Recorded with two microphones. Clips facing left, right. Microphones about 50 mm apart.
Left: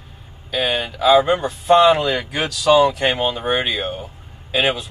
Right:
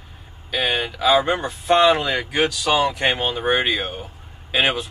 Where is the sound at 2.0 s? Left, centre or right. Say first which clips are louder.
Right 1 dB; centre.